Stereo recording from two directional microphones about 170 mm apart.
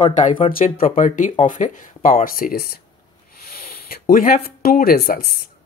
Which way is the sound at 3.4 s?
60° left (ahead or behind).